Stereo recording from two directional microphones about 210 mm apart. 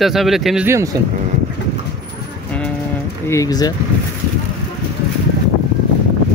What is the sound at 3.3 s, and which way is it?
Speech, 15° left (ahead or behind).